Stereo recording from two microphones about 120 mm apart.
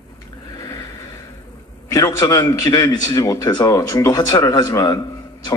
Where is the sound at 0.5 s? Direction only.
30° left (ahead or behind).